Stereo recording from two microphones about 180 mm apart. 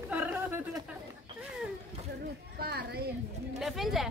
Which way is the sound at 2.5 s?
60° right (ahead or behind).